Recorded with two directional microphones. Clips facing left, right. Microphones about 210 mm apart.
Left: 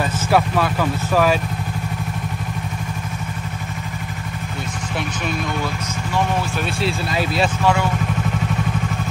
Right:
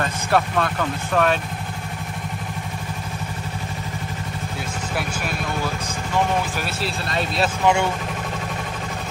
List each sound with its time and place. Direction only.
0.3 s speech: 5° left (ahead or behind)
6.8 s speech: centre (ahead or behind)
7.6 s speech: 25° right (ahead or behind)